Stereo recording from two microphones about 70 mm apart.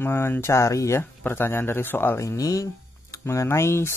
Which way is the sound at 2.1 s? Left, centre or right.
Left.